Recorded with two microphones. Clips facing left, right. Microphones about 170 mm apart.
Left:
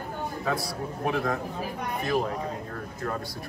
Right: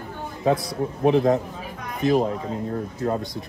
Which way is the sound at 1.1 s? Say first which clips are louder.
Right 10 dB; 25° right (ahead or behind).